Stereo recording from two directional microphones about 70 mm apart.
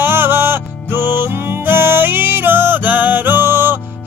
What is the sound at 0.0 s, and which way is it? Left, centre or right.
Music, right.